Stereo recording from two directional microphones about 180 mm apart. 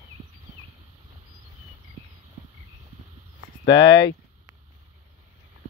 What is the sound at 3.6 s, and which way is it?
Speech, 25° left (ahead or behind).